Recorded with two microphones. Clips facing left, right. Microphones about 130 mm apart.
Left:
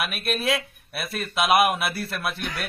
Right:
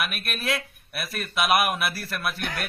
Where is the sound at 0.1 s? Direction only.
30° left (ahead or behind).